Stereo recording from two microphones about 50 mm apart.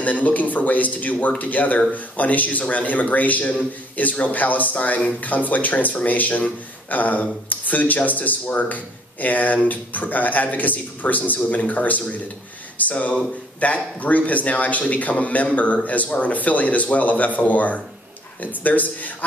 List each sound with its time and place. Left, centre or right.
0.0 s speech: left